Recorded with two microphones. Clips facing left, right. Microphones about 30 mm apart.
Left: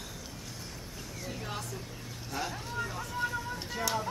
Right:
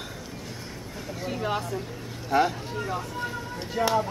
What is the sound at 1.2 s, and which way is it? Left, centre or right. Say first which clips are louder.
Speech: right 11 dB; right.